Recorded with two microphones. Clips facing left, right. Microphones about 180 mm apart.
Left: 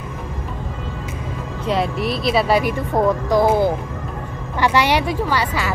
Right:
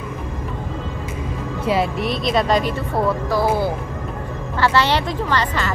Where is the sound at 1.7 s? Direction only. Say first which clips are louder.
Even; centre (ahead or behind).